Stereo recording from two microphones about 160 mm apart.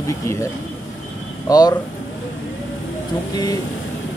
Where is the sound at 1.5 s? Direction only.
25° left (ahead or behind).